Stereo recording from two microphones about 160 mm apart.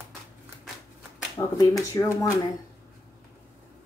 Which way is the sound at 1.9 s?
20° left (ahead or behind).